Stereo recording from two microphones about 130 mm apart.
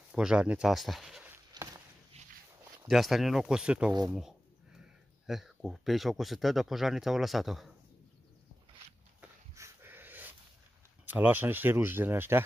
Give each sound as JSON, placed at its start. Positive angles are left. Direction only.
{"t": 0.1, "sound": "speech", "side_deg": -5}
{"t": 1.6, "sound": "walk", "side_deg": -35}
{"t": 2.1, "sound": "walk", "side_deg": -50}
{"t": 2.9, "sound": "speech", "side_deg": 0}
{"t": 9.6, "sound": "dog", "side_deg": -20}
{"t": 11.1, "sound": "speech", "side_deg": -15}